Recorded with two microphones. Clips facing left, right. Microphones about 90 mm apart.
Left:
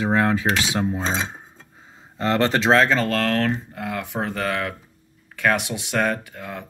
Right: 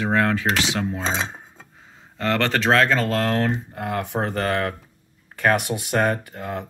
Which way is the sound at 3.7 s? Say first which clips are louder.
Right 2 dB; 45° right (ahead or behind).